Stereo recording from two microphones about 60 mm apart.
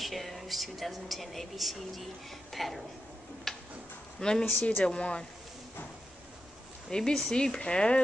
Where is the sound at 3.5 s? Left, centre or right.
Centre.